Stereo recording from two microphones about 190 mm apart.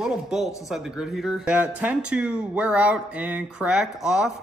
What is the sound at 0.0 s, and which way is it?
Speech, 5° right (ahead or behind).